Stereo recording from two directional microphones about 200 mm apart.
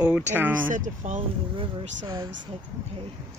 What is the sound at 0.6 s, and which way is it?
Speech, 40° right (ahead or behind).